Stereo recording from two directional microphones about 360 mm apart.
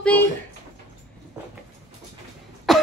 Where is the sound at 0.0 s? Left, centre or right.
Centre.